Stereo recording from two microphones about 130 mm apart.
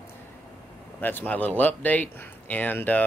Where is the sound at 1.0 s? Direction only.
15° left (ahead or behind).